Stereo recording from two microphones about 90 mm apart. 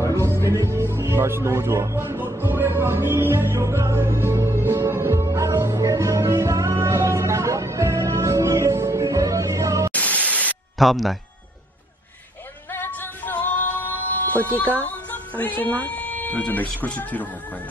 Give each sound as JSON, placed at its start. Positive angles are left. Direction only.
{"t": 0.1, "sound": "music", "side_deg": -30}
{"t": 9.9, "sound": "static", "side_deg": 15}
{"t": 10.8, "sound": "speech", "side_deg": 0}
{"t": 12.7, "sound": "music", "side_deg": 20}
{"t": 14.8, "sound": "speech", "side_deg": 20}